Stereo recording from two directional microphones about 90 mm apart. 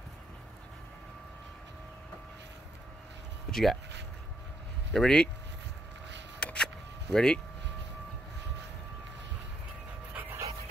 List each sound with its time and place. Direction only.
3.4 s speech: 5° left (ahead or behind)
4.9 s speech: 10° left (ahead or behind)
6.4 s a sound: 10° left (ahead or behind)
7.1 s speech: 5° left (ahead or behind)
10.1 s dog: 20° right (ahead or behind)